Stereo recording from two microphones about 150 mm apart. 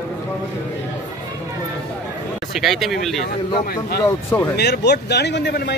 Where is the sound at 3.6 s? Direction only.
80° left.